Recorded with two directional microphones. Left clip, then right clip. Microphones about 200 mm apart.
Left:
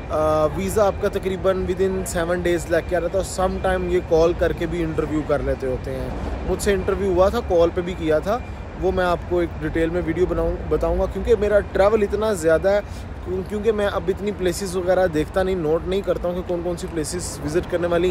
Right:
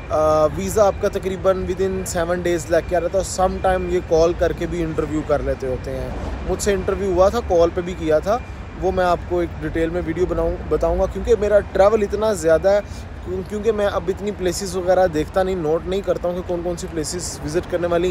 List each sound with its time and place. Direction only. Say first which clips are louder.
0.1 s speech: right 3 dB; 10° left (ahead or behind)